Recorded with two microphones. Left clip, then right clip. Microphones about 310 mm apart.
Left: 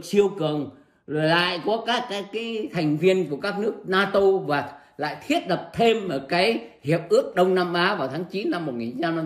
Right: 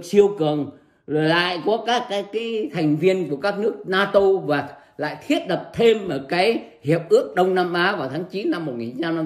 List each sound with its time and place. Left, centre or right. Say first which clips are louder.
0.1 s a man's voice: right 4 dB; centre